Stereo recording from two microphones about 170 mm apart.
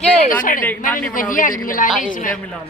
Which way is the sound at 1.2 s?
50° left (ahead or behind).